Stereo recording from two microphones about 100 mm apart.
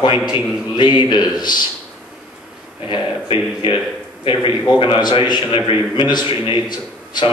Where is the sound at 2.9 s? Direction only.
55° left (ahead or behind).